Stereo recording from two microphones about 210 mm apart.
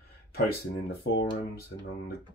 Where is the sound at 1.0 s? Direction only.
60° left (ahead or behind).